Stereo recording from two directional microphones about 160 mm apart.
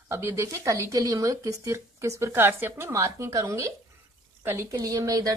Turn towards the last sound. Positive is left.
turn(degrees=-20)  # may be behind; listen again after turning